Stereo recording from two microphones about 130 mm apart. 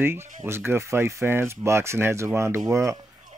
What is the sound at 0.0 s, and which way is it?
Speech, 20° right (ahead or behind).